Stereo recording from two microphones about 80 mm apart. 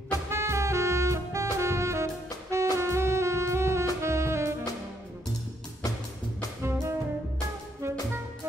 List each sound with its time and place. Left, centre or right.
0.3 s saxophone: right
6.6 s music: right